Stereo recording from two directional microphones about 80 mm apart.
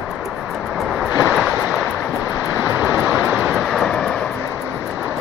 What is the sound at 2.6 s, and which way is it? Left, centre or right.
Vehicle, centre.